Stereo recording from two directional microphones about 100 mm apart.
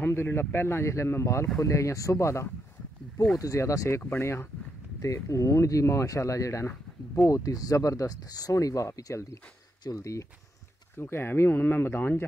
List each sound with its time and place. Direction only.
0.0 s speech: 25° left (ahead or behind)